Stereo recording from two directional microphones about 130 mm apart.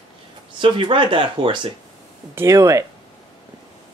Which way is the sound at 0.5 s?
40° right (ahead or behind).